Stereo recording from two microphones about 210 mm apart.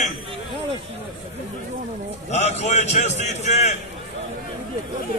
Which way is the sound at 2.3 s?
30° left (ahead or behind).